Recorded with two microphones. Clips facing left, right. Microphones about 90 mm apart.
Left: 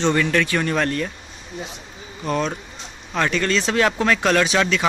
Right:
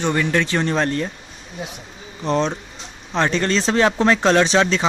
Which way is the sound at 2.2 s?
25° right (ahead or behind).